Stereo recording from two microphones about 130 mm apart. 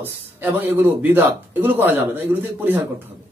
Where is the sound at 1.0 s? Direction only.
15° right (ahead or behind).